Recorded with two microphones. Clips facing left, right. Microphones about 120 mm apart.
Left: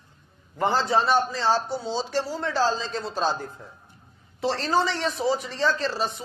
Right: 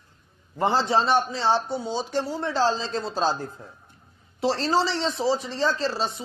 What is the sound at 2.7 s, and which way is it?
Speech, 30° right (ahead or behind).